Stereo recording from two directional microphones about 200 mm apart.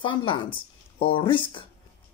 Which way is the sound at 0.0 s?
25° left (ahead or behind).